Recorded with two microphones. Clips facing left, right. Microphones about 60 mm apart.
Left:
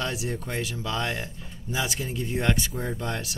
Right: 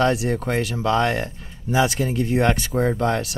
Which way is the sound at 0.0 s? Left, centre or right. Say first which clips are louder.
Right 10 dB; right.